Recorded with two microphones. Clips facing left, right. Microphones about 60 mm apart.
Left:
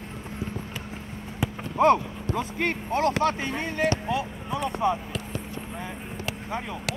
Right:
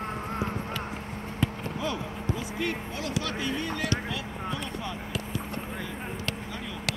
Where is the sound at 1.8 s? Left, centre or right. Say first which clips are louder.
Left 14 dB; left.